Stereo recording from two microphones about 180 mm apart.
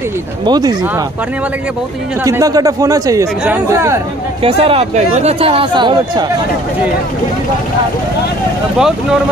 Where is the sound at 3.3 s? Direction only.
5° right (ahead or behind).